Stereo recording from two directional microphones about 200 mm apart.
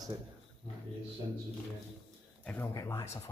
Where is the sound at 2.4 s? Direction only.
10° left (ahead or behind).